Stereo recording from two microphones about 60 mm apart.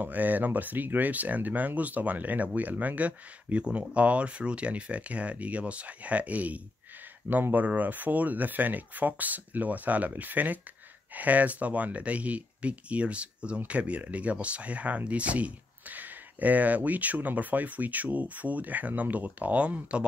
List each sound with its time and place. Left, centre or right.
0.0 s speech: right